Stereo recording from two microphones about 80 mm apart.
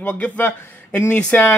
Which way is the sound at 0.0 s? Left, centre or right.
Centre.